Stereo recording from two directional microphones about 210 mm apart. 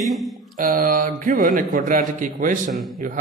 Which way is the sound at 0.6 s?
40° right (ahead or behind).